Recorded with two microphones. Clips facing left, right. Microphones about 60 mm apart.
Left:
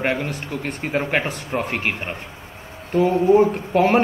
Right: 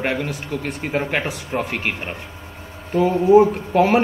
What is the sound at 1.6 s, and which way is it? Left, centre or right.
Speech, centre.